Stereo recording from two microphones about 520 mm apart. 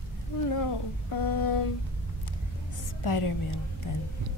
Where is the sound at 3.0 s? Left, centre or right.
Left.